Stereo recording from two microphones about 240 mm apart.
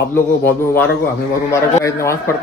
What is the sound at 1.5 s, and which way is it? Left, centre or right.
Speech, centre.